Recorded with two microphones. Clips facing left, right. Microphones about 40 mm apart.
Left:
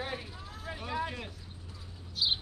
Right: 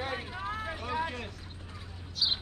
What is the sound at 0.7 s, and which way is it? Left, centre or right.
Vehicle, centre.